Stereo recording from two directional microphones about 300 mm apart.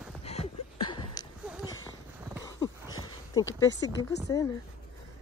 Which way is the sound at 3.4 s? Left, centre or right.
Centre.